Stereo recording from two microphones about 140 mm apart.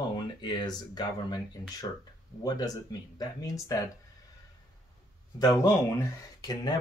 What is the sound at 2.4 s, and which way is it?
Speech, 25° left (ahead or behind).